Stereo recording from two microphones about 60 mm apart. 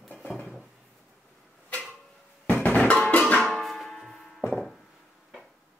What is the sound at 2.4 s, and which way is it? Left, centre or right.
Music, left.